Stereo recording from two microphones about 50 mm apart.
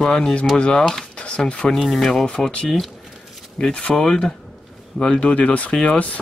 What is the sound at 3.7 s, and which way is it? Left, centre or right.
Speech, left.